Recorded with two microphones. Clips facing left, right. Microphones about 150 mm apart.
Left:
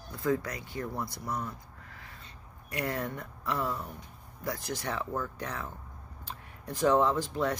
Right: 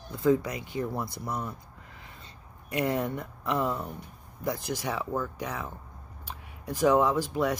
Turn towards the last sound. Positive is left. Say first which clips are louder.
# right 3 dB
turn(degrees=-15)  # may be behind; listen again after turning